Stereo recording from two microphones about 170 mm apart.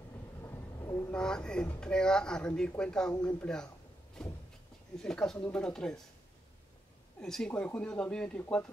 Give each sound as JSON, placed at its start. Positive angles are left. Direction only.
{"t": 0.4, "sound": "a sound", "side_deg": 15}
{"t": 1.1, "sound": "speech", "side_deg": 5}
{"t": 7.2, "sound": "speech", "side_deg": 5}